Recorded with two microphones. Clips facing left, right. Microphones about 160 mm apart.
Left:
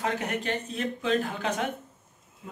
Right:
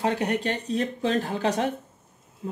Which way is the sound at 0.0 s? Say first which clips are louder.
Right 5 dB; 30° right (ahead or behind).